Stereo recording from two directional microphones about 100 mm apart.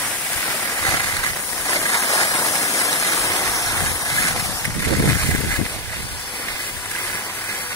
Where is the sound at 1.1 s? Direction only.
35° left (ahead or behind).